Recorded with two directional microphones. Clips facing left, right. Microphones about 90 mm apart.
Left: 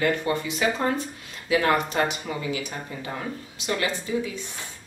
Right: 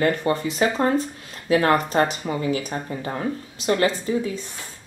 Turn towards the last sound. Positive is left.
turn(degrees=-40)  # may be behind; listen again after turning